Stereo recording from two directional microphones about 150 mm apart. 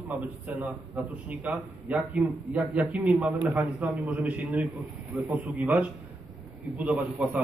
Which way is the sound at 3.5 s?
15° right (ahead or behind).